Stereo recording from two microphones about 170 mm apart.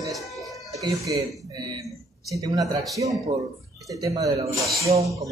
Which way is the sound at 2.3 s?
20° right (ahead or behind).